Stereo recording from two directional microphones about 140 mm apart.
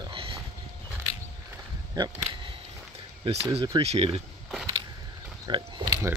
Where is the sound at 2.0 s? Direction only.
30° right (ahead or behind).